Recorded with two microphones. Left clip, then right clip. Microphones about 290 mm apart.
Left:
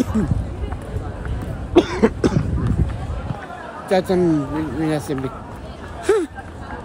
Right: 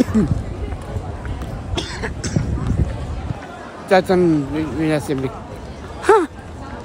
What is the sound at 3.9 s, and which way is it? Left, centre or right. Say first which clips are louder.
Speech: right 3 dB; centre.